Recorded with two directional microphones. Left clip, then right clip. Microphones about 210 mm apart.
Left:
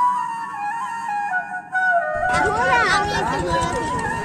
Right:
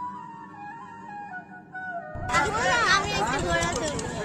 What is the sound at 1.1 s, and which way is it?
Music, 45° left (ahead or behind).